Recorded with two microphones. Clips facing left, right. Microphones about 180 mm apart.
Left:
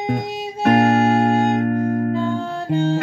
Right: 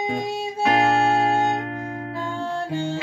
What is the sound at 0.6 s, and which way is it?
Music, 55° left (ahead or behind).